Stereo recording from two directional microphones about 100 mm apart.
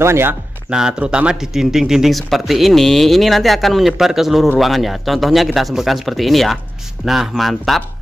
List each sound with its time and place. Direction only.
0.0 s speech: 25° right (ahead or behind)
0.7 s speech: 5° right (ahead or behind)